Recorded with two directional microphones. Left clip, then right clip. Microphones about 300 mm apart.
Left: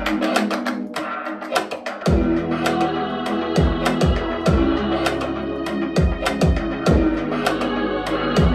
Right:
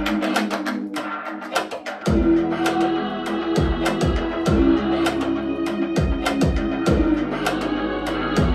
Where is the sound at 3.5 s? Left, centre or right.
Centre.